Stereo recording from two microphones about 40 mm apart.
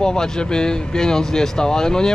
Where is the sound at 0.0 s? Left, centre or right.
Centre.